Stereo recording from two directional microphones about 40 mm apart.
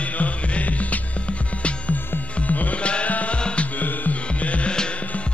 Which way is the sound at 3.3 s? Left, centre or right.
Left.